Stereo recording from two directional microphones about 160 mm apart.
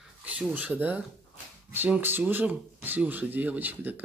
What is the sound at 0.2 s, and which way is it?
Speech, 10° right (ahead or behind).